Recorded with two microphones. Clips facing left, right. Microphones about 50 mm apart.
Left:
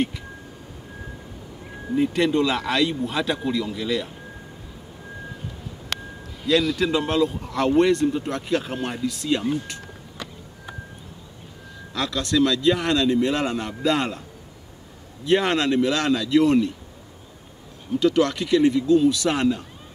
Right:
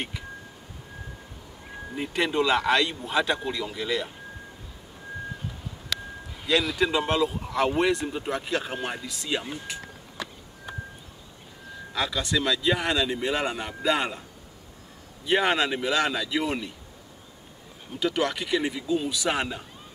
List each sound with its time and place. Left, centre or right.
2.0 s a man's voice: centre
5.9 s a sound: left
6.4 s a man's voice: centre
11.9 s a man's voice: centre
15.2 s a man's voice: centre
17.9 s a man's voice: centre